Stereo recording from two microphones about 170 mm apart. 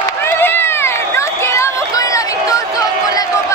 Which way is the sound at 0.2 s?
15° left (ahead or behind).